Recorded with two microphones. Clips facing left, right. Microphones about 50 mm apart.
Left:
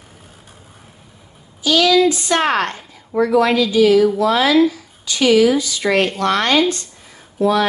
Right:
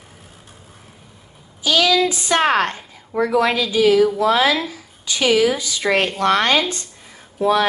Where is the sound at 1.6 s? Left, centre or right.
Right.